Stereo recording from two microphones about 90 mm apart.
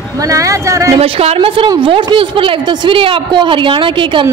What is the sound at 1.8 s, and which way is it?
A woman's voice, 70° right (ahead or behind).